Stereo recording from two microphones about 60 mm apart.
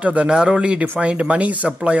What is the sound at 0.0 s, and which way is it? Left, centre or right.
A woman's voice, right.